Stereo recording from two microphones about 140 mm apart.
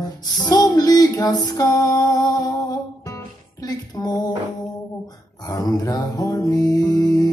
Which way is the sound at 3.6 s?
30° left (ahead or behind).